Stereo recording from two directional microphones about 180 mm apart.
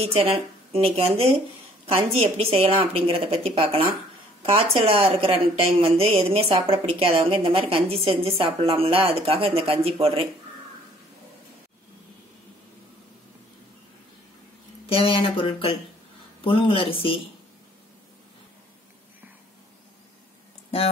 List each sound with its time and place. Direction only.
0.0 s a woman's voice: 35° right (ahead or behind)
2.3 s a woman's voice: 35° right (ahead or behind)
14.9 s speech: 30° left (ahead or behind)